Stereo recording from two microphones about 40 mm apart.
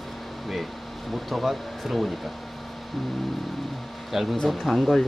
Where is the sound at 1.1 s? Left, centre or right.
Centre.